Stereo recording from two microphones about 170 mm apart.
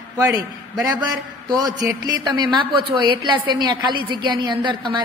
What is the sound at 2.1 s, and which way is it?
A woman's voice, 25° right (ahead or behind).